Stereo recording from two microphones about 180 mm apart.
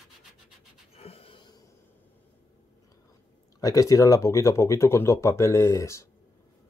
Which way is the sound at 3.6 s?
20° left (ahead or behind).